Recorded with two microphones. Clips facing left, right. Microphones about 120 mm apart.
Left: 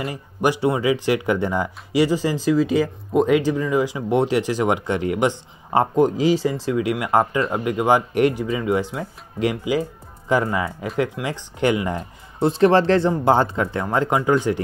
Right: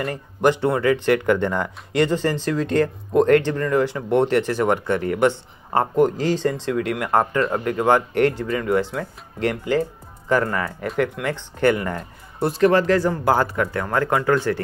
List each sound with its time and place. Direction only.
0.0 s speech: 10° left (ahead or behind)